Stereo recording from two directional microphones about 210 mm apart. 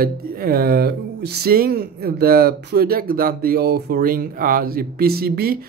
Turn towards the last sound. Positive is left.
turn(degrees=-45)  # may be behind; listen again after turning